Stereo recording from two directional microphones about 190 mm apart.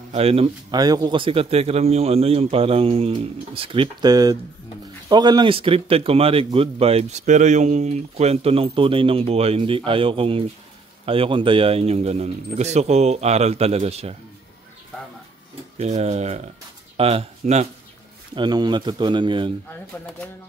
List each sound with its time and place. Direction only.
0.1 s speech: 30° right (ahead or behind)
0.7 s a man's voice: 20° right (ahead or behind)
15.8 s speech: 35° right (ahead or behind)
18.3 s a man's voice: 20° right (ahead or behind)